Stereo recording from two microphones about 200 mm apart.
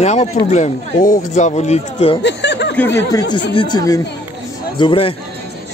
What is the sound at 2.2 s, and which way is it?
Snicker, 60° left (ahead or behind).